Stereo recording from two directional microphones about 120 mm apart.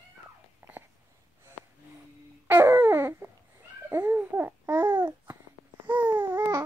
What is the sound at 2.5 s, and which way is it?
Babbling, 20° right (ahead or behind).